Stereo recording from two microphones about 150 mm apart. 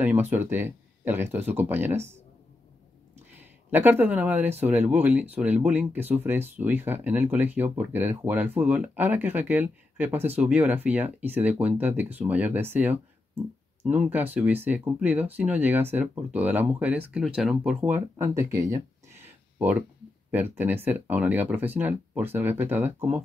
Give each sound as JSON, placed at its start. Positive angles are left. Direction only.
{"t": 0.0, "sound": "speech", "side_deg": -15}
{"t": 3.3, "sound": "speech", "side_deg": -10}
{"t": 18.1, "sound": "a sound", "side_deg": -20}
{"t": 20.2, "sound": "speech", "side_deg": -10}